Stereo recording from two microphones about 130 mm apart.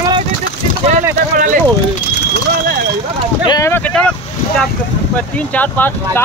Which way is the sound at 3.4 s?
25° left (ahead or behind).